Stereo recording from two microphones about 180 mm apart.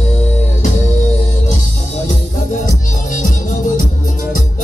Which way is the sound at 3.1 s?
45° left (ahead or behind).